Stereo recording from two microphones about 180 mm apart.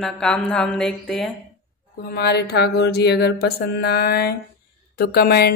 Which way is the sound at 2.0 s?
60° left (ahead or behind).